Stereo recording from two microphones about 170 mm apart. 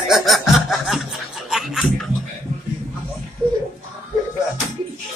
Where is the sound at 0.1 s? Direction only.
Centre (ahead or behind).